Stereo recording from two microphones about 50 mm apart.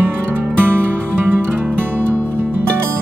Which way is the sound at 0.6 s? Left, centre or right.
Right.